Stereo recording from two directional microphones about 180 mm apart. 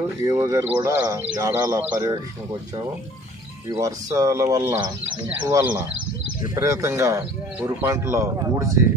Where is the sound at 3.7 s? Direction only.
20° right (ahead or behind).